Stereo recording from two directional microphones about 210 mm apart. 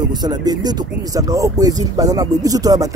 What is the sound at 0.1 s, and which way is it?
Speech, 20° right (ahead or behind).